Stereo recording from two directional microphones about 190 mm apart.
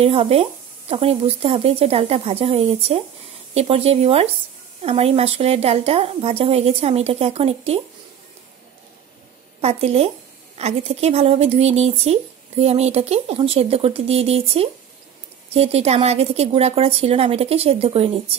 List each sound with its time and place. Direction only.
0.0 s speech: 30° right (ahead or behind)
9.6 s speech: 35° right (ahead or behind)